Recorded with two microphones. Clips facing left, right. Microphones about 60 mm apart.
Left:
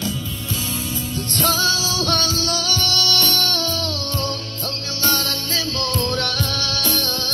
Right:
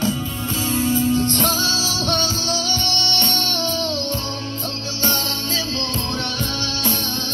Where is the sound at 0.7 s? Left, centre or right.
Right.